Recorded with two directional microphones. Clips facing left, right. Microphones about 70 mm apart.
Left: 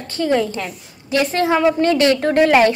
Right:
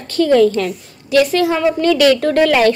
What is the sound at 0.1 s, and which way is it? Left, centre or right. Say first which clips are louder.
A woman's voice: right 7 dB; left.